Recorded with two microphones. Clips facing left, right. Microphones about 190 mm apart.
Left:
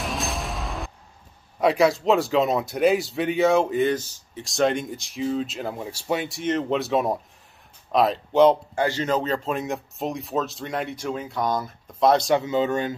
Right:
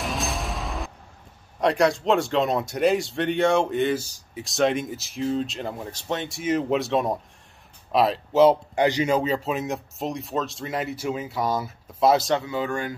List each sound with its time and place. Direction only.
0.0 s music: centre (ahead or behind)
1.6 s speech: 5° left (ahead or behind)
4.0 s speech: 10° right (ahead or behind)
8.7 s speech: 15° right (ahead or behind)
12.4 s speech: 20° left (ahead or behind)